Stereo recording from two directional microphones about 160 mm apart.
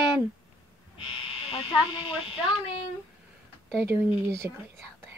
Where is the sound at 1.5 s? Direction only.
35° left (ahead or behind).